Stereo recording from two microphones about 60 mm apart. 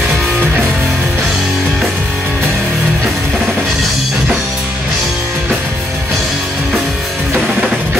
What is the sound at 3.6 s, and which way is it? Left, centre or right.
Music, centre.